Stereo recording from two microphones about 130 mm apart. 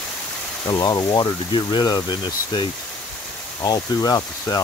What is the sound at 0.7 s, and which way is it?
Speech, 30° left (ahead or behind).